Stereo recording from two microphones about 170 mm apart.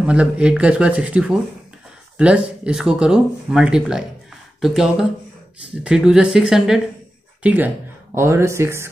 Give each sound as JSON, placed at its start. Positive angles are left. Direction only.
{"t": 0.0, "sound": "speech", "side_deg": -5}